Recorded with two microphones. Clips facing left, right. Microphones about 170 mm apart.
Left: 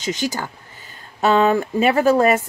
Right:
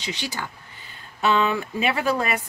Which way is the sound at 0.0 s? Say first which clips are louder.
Left 7 dB; 45° left (ahead or behind).